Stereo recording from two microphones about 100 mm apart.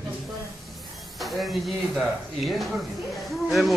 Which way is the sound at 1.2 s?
Centre (ahead or behind).